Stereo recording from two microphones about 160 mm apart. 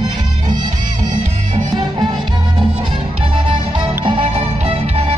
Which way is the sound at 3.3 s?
35° right (ahead or behind).